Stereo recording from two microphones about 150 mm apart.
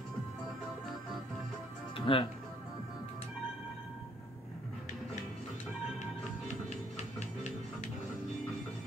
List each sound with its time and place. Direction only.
2.0 s music: 35° left (ahead or behind)
6.4 s music: 50° left (ahead or behind)